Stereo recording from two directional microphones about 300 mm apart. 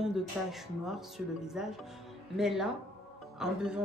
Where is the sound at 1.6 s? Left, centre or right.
Centre.